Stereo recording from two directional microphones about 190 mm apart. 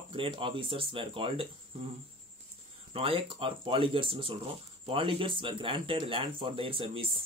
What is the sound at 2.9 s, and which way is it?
Speech, 30° right (ahead or behind).